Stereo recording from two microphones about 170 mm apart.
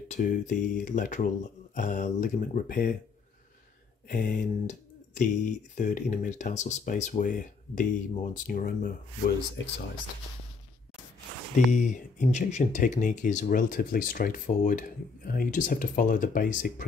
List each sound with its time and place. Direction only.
0.1 s speech: 50° left (ahead or behind)
4.1 s speech: 55° left (ahead or behind)
11.7 s speech: 45° left (ahead or behind)